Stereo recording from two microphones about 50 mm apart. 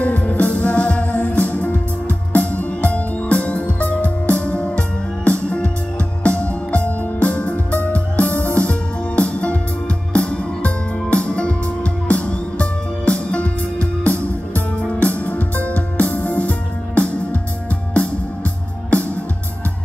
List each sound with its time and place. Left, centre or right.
0.0 s music: left